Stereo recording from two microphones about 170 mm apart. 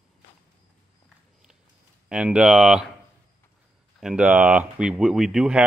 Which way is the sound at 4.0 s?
5° right (ahead or behind).